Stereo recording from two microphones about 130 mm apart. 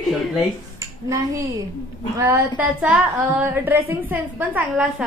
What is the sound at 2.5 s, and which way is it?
A woman's voice, 10° right (ahead or behind).